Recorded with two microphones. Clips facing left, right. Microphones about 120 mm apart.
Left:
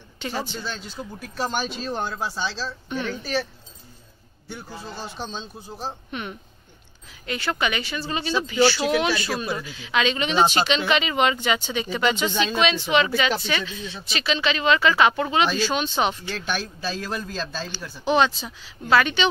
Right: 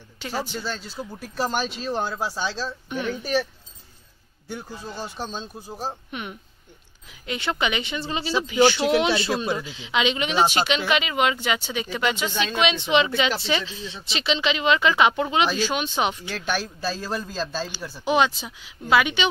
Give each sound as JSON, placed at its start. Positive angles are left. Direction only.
{"t": 0.2, "sound": "speech", "side_deg": -5}
{"t": 4.9, "sound": "speech", "side_deg": -10}
{"t": 12.5, "sound": "a woman's voice", "side_deg": -20}